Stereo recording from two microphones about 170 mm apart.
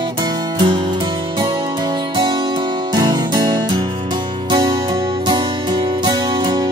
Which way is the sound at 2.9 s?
25° right (ahead or behind).